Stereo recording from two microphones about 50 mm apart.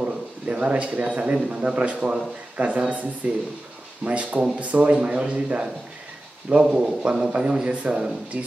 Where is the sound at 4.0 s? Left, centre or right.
Right.